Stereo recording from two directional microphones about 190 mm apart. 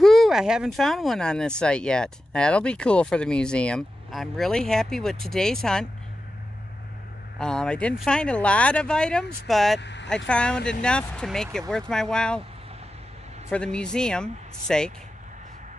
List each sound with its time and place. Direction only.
0.0 s speech: centre (ahead or behind)
7.3 s speech: 5° left (ahead or behind)
9.8 s speech: 65° left (ahead or behind)
10.0 s speech: 5° left (ahead or behind)
13.5 s speech: 5° left (ahead or behind)